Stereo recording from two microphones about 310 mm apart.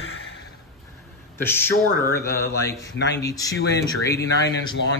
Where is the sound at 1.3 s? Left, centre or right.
Centre.